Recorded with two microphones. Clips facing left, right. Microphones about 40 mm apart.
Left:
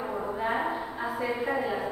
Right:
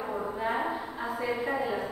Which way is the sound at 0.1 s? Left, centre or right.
Centre.